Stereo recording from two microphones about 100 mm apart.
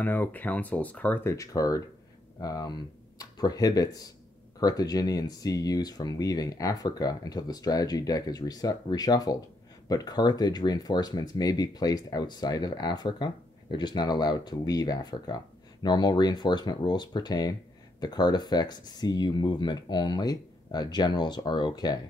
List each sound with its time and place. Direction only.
0.0 s speech: 15° left (ahead or behind)
1.2 s speech: 35° left (ahead or behind)